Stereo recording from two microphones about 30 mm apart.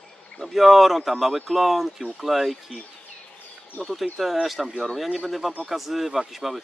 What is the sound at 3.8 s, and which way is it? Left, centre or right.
Speech, left.